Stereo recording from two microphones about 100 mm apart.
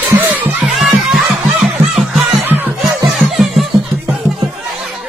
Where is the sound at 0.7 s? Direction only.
Centre (ahead or behind).